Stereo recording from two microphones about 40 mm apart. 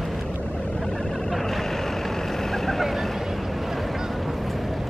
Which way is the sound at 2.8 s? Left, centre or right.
Centre.